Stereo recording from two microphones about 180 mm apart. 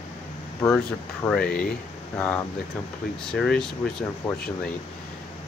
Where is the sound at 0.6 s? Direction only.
15° left (ahead or behind).